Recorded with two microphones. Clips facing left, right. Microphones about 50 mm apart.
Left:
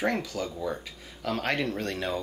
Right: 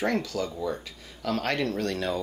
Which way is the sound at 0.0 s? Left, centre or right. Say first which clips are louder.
Right 1 dB; centre.